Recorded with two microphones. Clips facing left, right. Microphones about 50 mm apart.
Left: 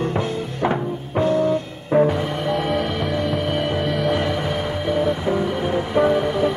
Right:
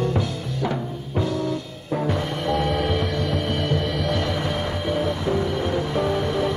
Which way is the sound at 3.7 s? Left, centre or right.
Centre.